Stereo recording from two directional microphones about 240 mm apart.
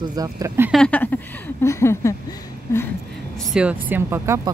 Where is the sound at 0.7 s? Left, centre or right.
Centre.